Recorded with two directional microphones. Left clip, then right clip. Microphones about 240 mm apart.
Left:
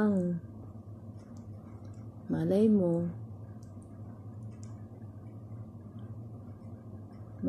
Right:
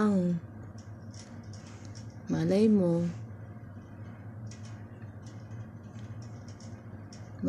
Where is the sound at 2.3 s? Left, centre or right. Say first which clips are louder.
Right 1 dB; right.